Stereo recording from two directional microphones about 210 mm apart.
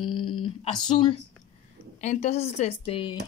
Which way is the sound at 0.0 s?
25° left (ahead or behind).